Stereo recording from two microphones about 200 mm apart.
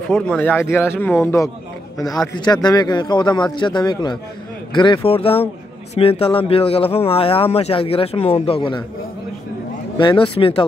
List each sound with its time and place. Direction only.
0.1 s speech: 5° left (ahead or behind)
2.4 s speech: 20° left (ahead or behind)
9.9 s speech: 25° left (ahead or behind)